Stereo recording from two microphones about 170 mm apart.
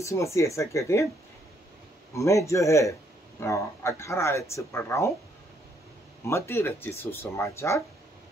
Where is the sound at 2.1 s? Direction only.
15° left (ahead or behind).